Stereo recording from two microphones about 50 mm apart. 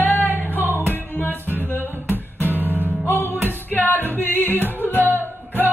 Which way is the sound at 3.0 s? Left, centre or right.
Left.